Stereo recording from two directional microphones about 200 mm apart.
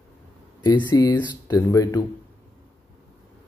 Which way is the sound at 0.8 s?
20° left (ahead or behind).